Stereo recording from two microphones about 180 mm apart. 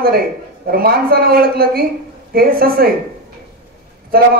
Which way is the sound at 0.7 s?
55° right (ahead or behind).